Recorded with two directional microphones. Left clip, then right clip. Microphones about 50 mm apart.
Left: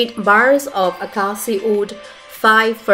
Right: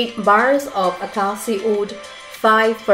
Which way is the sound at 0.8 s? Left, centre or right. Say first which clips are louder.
Left 1 dB; centre.